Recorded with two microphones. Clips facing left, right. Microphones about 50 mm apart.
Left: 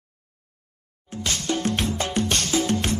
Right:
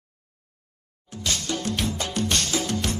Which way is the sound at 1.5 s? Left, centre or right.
Left.